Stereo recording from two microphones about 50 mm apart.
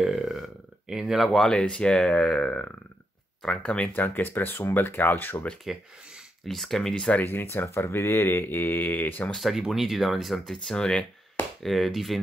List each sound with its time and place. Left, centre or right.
0.0 s burping: centre
0.9 s speech: centre
1.5 s speech: centre
3.9 s speech: left
6.4 s speech: centre
7.5 s speech: left
9.4 s speech: centre
11.6 s speech: centre